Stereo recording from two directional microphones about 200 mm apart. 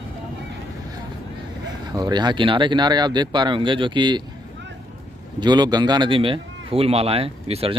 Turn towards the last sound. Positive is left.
turn(degrees=-30)  # may be behind; listen again after turning